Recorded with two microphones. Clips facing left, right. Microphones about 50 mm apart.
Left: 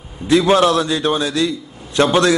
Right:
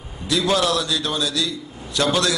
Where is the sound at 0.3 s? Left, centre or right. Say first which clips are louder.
Left 7 dB; left.